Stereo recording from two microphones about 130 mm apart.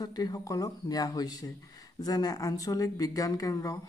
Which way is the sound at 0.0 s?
30° left (ahead or behind).